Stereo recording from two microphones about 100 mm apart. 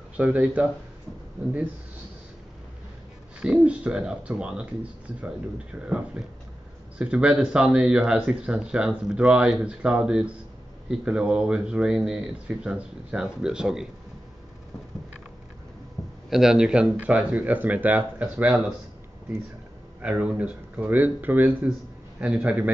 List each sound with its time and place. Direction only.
0.2 s speech: 15° right (ahead or behind)
3.3 s speech: 10° right (ahead or behind)
5.8 s speech: 10° right (ahead or behind)
16.3 s speech: 5° right (ahead or behind)
20.0 s speech: 10° right (ahead or behind)